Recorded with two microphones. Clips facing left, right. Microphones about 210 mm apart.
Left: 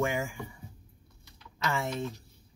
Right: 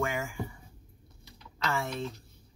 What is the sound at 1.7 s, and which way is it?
Speech, 15° left (ahead or behind).